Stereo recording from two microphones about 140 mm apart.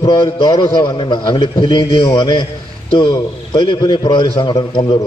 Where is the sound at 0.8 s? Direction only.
30° left (ahead or behind).